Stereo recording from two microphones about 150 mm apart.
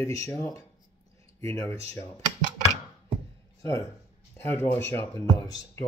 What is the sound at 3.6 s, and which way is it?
Speech, 20° left (ahead or behind).